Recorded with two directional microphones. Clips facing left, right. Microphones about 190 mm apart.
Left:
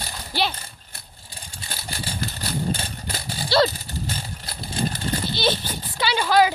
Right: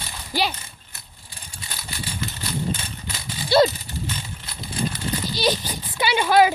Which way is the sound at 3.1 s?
35° left (ahead or behind).